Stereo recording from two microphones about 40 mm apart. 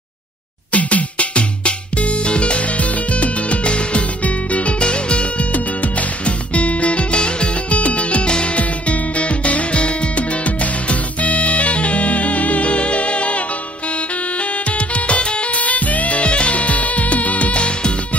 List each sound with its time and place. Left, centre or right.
0.7 s music: left
7.7 s music: left
14.7 s music: left